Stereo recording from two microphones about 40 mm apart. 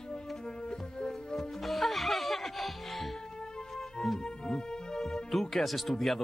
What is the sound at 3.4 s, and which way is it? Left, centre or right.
Music, centre.